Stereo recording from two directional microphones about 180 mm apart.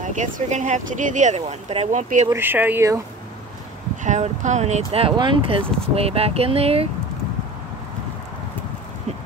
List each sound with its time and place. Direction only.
0.0 s speech: 45° right (ahead or behind)
2.2 s speech: 10° right (ahead or behind)
4.0 s speech: 40° right (ahead or behind)